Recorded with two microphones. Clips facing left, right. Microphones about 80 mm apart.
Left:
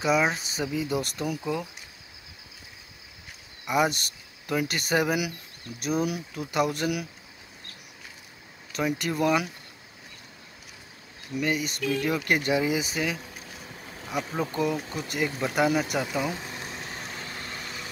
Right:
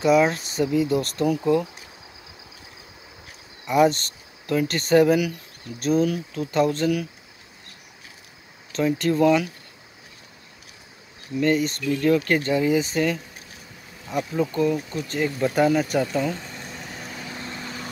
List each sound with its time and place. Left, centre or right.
0.0 s speech: centre
1.4 s speech: centre
3.6 s speech: centre
8.7 s speech: centre
11.3 s speech: centre
15.1 s speech: centre
17.2 s vehicle: right